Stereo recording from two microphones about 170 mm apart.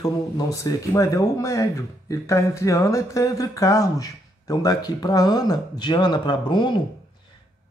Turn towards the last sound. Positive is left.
turn(degrees=25)  # may be behind; listen again after turning